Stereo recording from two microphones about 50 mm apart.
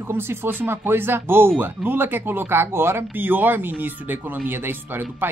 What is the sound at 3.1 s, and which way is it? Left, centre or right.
Speech, right.